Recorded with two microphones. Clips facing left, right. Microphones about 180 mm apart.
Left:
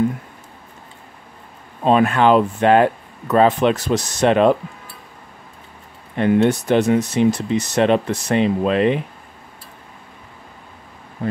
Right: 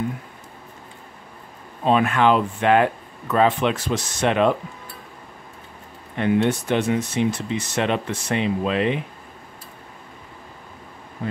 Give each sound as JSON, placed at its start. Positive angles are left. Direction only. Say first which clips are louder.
{"t": 1.9, "sound": "speech", "louder": "left 4 dB", "side_deg": 40}
{"t": 6.1, "sound": "speech", "louder": "left 4 dB", "side_deg": 40}